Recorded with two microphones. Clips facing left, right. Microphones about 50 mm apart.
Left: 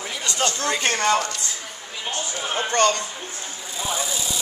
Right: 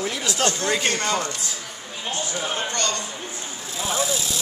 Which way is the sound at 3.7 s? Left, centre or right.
Centre.